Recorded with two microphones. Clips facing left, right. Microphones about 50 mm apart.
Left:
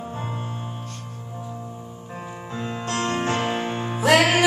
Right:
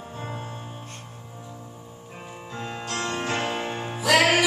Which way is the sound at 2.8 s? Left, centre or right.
Left.